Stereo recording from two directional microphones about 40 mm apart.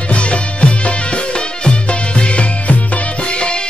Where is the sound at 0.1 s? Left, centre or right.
Left.